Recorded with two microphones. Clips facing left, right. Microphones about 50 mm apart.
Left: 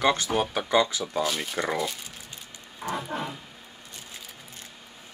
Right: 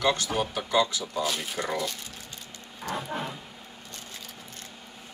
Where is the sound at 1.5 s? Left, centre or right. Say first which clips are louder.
Left 2 dB; centre.